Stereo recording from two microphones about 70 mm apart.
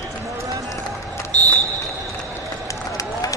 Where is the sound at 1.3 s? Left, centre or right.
Centre.